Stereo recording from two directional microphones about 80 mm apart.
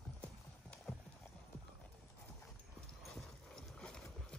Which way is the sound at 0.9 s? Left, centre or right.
Centre.